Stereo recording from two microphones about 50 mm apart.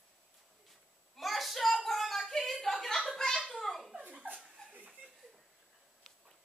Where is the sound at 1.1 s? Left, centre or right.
Centre.